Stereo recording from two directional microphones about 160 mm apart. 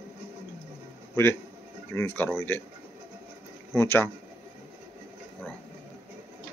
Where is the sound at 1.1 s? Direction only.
15° left (ahead or behind).